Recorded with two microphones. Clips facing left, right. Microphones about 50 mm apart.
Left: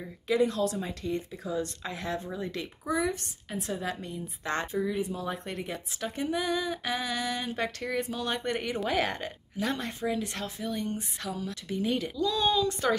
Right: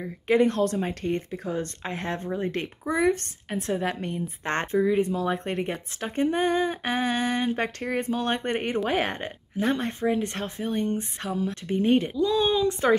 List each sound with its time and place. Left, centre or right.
0.3 s a woman's voice: right
12.2 s speech: right